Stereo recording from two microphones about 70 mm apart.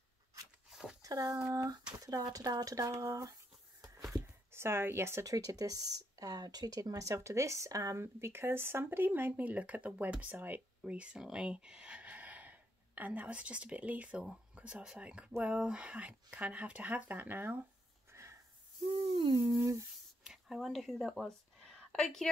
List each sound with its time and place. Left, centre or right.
0.7 s a sound: centre
1.0 s speech: right
1.5 s speech: right
2.0 s speech: right
4.2 s a sound: right
5.2 s speech: right
10.9 s speech: centre
12.0 s a sound: right
14.5 s speech: centre
18.1 s a sound: right
19.3 s speech: right
20.2 s a woman's voice: centre